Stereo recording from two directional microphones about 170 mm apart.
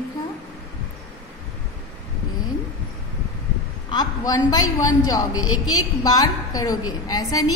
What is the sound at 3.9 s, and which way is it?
A woman's voice, 20° left (ahead or behind).